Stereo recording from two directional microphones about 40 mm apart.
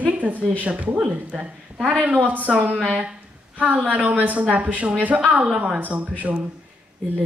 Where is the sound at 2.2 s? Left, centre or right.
Right.